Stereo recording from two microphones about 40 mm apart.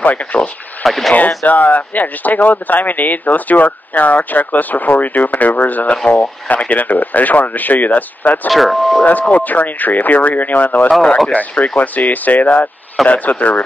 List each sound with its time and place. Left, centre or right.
0.0 s speech: left
0.8 s speech: centre
1.1 s speech: left
8.5 s speech: centre
9.0 s speech: left